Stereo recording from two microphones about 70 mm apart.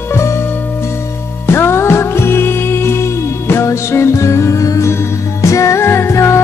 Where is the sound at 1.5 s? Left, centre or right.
Left.